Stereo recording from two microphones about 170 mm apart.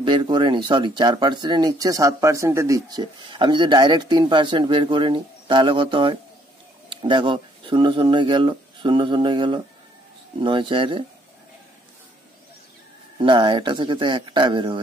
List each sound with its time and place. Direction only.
0.0 s speech: 30° right (ahead or behind)
13.2 s speech: 30° right (ahead or behind)